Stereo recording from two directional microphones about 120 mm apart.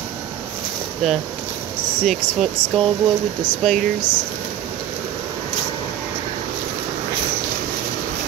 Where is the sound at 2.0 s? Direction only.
Centre (ahead or behind).